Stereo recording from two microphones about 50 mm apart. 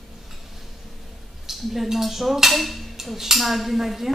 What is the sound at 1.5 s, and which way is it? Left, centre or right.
Speech, centre.